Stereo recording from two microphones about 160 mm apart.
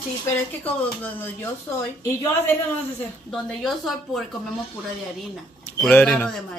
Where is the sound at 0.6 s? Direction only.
10° left (ahead or behind).